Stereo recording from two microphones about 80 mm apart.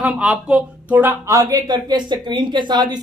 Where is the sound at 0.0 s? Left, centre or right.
Centre.